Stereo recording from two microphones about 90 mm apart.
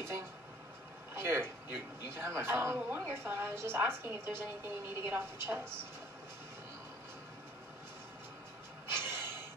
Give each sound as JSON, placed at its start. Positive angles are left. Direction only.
{"t": 1.1, "sound": "a woman's voice", "side_deg": -25}
{"t": 8.9, "sound": "snort", "side_deg": -25}